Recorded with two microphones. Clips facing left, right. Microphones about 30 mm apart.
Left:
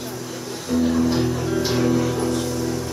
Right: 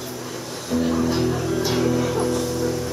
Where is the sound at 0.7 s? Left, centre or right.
Centre.